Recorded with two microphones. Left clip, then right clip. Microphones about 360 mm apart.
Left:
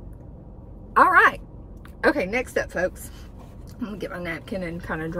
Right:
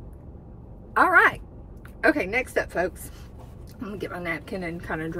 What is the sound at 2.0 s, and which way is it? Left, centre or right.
Speech, centre.